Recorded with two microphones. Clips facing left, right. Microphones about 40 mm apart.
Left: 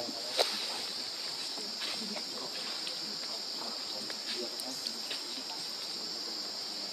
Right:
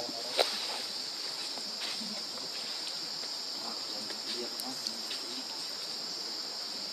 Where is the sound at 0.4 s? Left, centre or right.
Centre.